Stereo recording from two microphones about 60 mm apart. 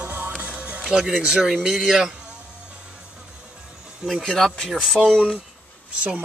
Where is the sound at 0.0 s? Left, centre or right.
Right.